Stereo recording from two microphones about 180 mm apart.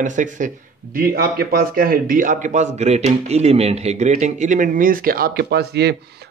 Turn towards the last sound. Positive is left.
turn(degrees=-65)  # may be behind; listen again after turning